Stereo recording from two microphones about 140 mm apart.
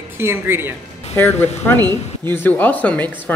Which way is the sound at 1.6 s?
15° left (ahead or behind).